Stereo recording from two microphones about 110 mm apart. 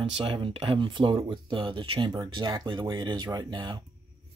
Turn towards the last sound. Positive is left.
turn(degrees=-45)  # may be behind; listen again after turning